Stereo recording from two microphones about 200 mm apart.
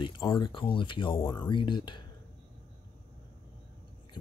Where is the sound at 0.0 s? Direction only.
20° left (ahead or behind).